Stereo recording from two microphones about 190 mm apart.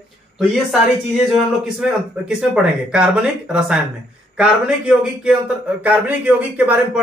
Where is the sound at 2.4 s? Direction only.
5° right (ahead or behind).